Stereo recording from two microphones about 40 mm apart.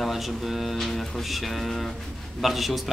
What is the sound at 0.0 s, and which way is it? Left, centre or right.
Speech, centre.